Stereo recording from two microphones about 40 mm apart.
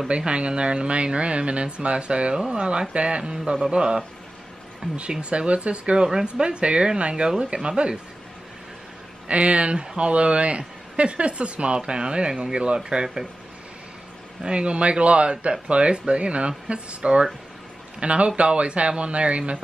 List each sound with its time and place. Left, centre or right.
0.1 s speech: right
5.2 s speech: right
9.3 s speech: right
14.4 s speech: right